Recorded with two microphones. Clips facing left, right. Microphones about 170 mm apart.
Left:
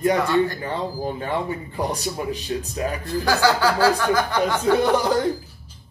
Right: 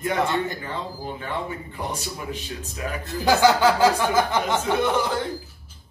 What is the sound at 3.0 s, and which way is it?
Speech, 20° right (ahead or behind).